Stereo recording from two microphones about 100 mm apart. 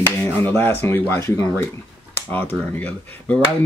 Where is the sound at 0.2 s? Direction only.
20° left (ahead or behind).